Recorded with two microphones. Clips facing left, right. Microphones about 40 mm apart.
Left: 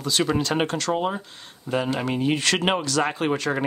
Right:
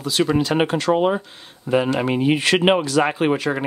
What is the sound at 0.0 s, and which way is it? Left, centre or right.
Speech, centre.